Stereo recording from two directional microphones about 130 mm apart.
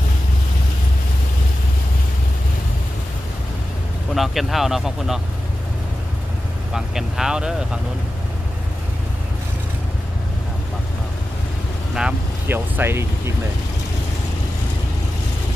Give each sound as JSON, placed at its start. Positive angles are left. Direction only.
{"t": 4.1, "sound": "speech", "side_deg": 0}
{"t": 6.7, "sound": "speech", "side_deg": -5}
{"t": 12.4, "sound": "speech", "side_deg": -15}